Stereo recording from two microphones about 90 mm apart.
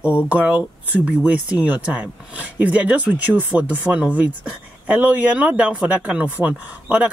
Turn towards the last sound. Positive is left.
turn(degrees=-15)  # may be behind; listen again after turning